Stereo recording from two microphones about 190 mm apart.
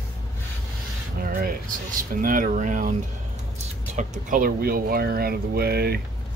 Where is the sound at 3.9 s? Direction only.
45° right (ahead or behind).